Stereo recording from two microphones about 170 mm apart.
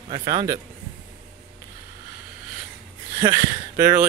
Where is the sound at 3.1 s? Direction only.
20° right (ahead or behind).